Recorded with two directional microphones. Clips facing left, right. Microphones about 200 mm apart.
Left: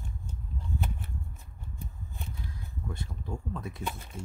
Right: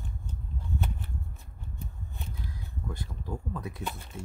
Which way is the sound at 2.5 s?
Centre (ahead or behind).